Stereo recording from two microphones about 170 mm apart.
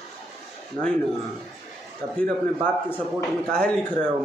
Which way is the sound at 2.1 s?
5° left (ahead or behind).